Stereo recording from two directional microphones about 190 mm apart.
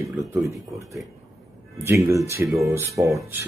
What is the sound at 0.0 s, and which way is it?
Speech, 15° right (ahead or behind).